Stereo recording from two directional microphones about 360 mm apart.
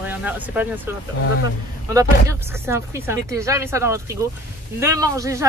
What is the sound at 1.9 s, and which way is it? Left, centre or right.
Speech, centre.